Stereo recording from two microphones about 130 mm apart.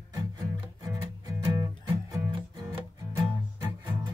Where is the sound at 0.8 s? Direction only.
30° right (ahead or behind).